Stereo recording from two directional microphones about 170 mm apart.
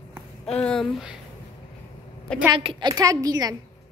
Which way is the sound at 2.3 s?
5° left (ahead or behind).